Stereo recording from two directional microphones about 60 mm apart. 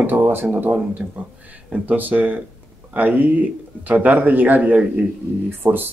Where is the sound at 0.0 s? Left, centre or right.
Right.